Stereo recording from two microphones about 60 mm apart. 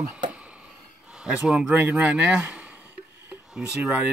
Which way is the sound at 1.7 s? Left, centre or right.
Right.